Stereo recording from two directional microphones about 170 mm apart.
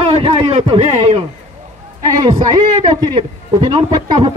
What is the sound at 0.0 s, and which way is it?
A man's voice, 35° right (ahead or behind).